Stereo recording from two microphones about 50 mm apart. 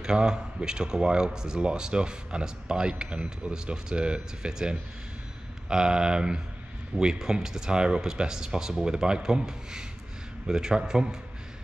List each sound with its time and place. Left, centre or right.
0.0 s speech: centre